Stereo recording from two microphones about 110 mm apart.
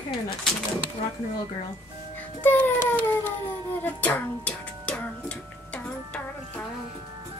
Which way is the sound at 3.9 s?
15° left (ahead or behind).